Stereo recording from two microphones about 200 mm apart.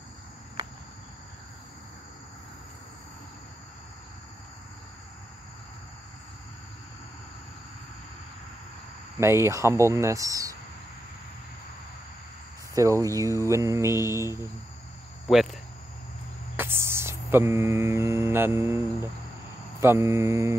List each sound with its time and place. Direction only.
9.2 s speech: 15° right (ahead or behind)
12.7 s speech: 15° right (ahead or behind)
16.5 s speech: 10° right (ahead or behind)
19.8 s speech: 15° right (ahead or behind)